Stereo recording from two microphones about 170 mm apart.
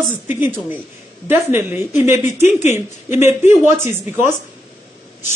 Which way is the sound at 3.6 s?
15° right (ahead or behind).